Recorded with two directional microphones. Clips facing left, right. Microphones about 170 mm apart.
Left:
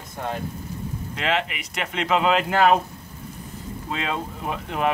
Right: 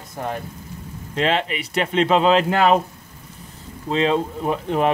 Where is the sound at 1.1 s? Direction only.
30° right (ahead or behind).